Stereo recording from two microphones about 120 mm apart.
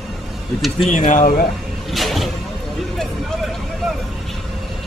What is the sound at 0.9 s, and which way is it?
Speech, 90° left.